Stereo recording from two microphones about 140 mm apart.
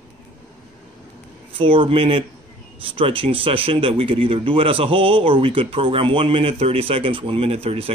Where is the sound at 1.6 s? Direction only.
40° right (ahead or behind).